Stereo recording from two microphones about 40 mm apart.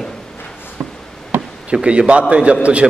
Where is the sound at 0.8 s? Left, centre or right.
Right.